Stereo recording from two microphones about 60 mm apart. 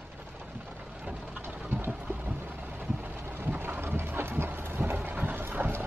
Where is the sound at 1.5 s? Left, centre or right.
Right.